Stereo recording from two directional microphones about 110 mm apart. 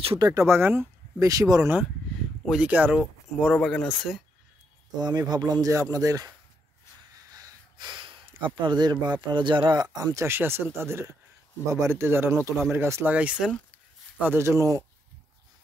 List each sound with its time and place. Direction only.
0.2 s speech: 30° right (ahead or behind)
1.2 s speech: 30° right (ahead or behind)
2.4 s speech: 5° right (ahead or behind)
3.3 s speech: 5° left (ahead or behind)
4.9 s speech: 35° right (ahead or behind)
7.2 s a sound: 35° right (ahead or behind)
10.1 s speech: 20° right (ahead or behind)